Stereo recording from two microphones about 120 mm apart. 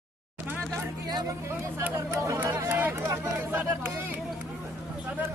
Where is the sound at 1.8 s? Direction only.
20° right (ahead or behind).